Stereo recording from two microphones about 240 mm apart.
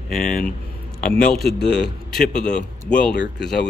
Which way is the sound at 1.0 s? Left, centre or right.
Left.